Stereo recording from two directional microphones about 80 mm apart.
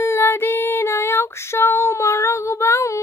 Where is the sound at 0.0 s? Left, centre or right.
Left.